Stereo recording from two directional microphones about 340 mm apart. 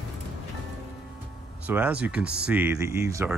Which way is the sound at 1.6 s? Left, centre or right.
Centre.